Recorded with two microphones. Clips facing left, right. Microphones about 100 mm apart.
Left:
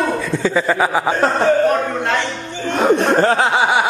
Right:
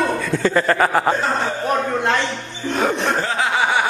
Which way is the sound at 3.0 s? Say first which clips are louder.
Left 6 dB; 50° left (ahead or behind).